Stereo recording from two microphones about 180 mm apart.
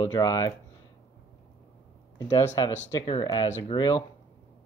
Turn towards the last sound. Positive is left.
turn(degrees=25)  # may be behind; listen again after turning